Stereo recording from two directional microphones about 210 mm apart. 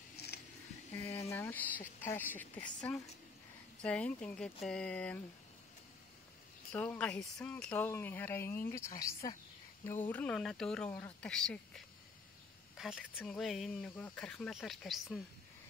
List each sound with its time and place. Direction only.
0.1 s a sound: 50° left (ahead or behind)
0.9 s a woman's voice: 15° left (ahead or behind)
6.7 s a woman's voice: 5° left (ahead or behind)